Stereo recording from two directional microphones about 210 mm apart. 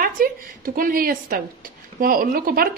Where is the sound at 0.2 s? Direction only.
45° right (ahead or behind).